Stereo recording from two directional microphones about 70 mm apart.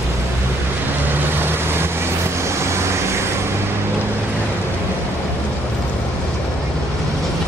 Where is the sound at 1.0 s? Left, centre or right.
Right.